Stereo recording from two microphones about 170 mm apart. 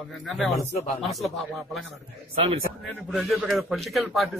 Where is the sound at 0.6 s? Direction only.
50° left (ahead or behind).